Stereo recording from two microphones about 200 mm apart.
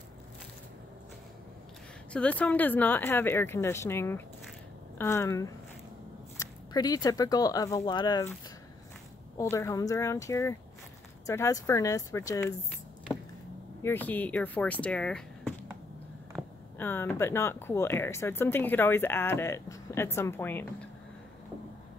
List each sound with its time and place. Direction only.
2.1 s speech: 5° left (ahead or behind)
6.7 s speech: 20° left (ahead or behind)
9.4 s speech: 15° left (ahead or behind)
13.8 s speech: 10° left (ahead or behind)